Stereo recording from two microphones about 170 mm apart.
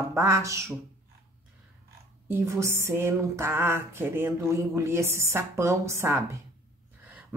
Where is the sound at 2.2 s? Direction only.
15° right (ahead or behind).